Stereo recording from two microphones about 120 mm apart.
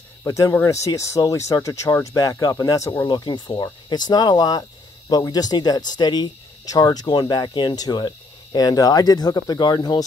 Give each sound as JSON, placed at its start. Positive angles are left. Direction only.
{"t": 0.2, "sound": "speech", "side_deg": 25}
{"t": 3.1, "sound": "speech", "side_deg": 35}